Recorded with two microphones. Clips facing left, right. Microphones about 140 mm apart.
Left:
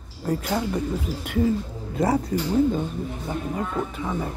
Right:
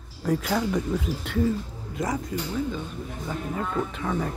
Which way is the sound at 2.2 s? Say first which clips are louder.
Left 7 dB; 35° left (ahead or behind).